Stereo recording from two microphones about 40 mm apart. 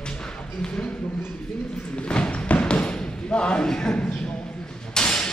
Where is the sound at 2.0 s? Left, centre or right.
Left.